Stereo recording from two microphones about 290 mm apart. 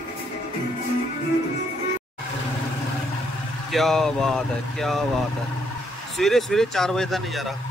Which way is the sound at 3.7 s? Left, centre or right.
Centre.